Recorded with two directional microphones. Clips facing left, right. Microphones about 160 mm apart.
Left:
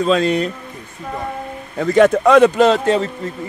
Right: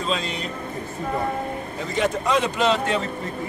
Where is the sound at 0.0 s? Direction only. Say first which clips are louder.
Left 11 dB; 55° left (ahead or behind).